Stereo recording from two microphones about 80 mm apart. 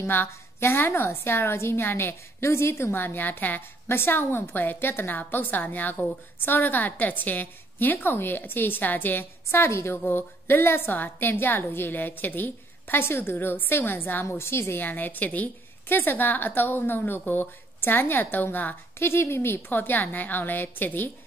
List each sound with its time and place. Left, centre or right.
0.0 s a woman's voice: left